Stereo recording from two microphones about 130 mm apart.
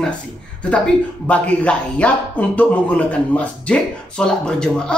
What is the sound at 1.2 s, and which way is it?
Speech, 10° left (ahead or behind).